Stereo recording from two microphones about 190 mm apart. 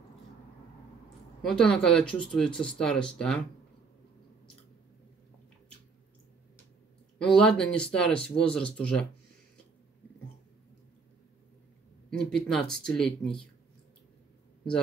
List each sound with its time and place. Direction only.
1.4 s speech: 5° left (ahead or behind)
7.2 s speech: 5° left (ahead or behind)
12.4 s speech: 5° left (ahead or behind)